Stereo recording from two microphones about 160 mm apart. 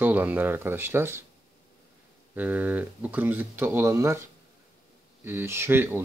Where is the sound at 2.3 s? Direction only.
10° right (ahead or behind).